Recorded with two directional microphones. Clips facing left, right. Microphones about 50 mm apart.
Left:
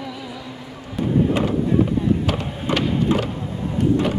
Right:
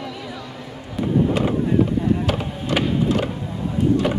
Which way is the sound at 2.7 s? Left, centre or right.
Left.